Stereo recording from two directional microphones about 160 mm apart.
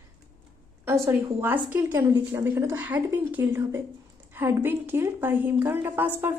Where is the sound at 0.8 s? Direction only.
15° right (ahead or behind).